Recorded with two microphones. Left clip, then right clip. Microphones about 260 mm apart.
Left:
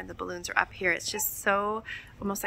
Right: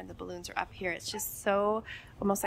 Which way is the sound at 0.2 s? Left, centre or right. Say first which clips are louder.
Left 8 dB; centre.